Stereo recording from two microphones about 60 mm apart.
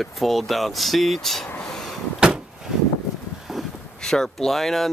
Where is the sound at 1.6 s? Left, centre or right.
Centre.